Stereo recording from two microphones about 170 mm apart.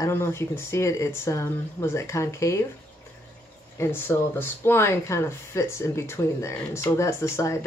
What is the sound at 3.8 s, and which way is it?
Speech, 15° left (ahead or behind).